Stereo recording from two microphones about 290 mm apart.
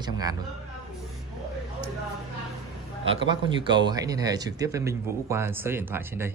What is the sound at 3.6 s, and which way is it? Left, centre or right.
Speech, centre.